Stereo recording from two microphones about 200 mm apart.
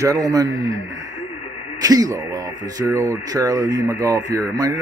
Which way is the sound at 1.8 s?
20° right (ahead or behind).